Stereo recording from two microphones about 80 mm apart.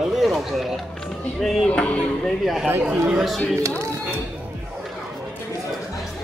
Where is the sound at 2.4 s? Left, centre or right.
Centre.